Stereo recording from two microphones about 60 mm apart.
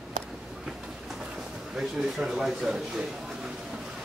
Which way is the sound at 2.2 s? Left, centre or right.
Centre.